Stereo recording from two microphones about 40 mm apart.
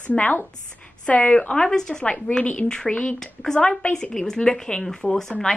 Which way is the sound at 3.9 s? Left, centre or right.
Centre.